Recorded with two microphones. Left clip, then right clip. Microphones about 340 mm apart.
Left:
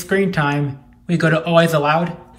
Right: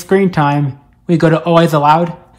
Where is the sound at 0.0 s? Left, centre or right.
Centre.